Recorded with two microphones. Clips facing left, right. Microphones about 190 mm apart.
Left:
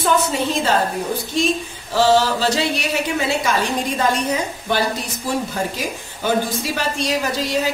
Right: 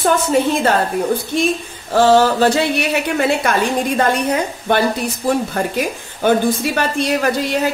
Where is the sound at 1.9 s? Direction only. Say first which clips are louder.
Right 4 dB; 50° right (ahead or behind).